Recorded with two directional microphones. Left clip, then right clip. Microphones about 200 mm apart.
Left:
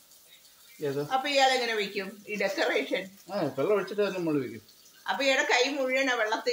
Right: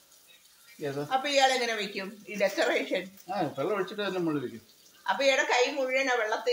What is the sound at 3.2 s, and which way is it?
Speech, 20° left (ahead or behind).